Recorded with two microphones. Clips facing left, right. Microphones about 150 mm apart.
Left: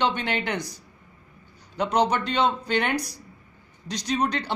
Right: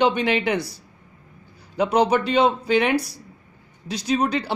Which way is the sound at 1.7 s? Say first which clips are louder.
Right 4 dB; 10° right (ahead or behind).